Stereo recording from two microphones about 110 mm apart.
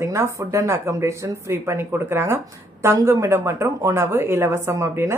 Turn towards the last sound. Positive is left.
turn(degrees=-25)  # may be behind; listen again after turning